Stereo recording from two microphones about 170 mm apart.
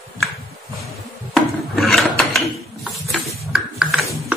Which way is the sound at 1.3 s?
Centre (ahead or behind).